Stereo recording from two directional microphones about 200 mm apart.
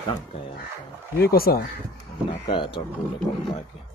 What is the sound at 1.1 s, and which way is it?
Speech, 50° left (ahead or behind).